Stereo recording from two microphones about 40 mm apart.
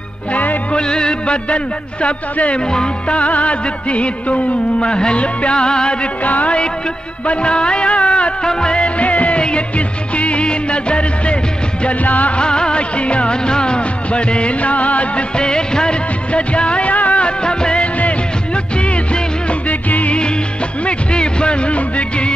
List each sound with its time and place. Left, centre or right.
0.3 s music: left
0.7 s speech: left
2.7 s music: centre
3.2 s music: left
6.2 s music: left
7.2 s music of bollywood: left
8.5 s music: centre; by 9.4 s left
9.4 s music of bollywood: left
12.0 s music: left
12.4 s music of bollywood: left
17.4 s music of bollywood: left
18.8 s music: left
19.7 s music: left
20.8 s music: left